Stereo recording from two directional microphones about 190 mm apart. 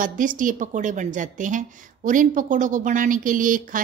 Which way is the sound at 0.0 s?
45° right (ahead or behind).